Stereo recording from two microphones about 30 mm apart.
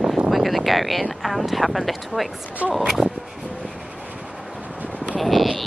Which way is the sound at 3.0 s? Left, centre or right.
Right.